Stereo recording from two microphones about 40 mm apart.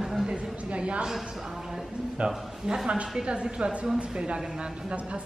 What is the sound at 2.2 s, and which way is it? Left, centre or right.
A woman's voice, right.